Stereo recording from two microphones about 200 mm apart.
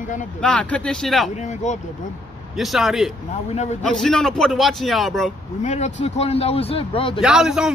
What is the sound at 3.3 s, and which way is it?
Speech, 35° left (ahead or behind).